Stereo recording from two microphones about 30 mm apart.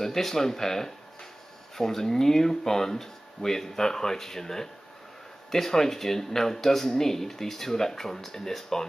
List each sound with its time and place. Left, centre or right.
0.0 s speech: centre